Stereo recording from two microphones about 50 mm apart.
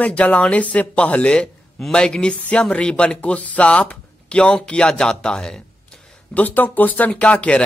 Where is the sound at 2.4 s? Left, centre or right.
Left; by 6.0 s centre.